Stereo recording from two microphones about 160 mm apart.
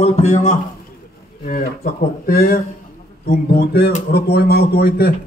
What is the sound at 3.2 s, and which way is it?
Speech, 90° left.